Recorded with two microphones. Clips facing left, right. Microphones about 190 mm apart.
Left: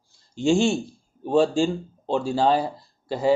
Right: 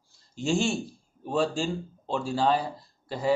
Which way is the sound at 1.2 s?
30° left (ahead or behind).